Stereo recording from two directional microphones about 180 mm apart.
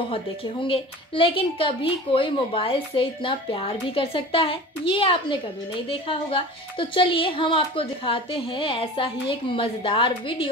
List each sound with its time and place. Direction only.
0.1 s a woman's voice: 30° left (ahead or behind)